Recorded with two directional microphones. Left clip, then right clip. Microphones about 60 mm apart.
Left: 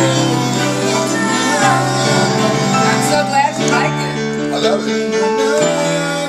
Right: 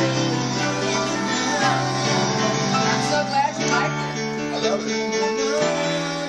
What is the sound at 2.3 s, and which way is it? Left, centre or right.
Music, right.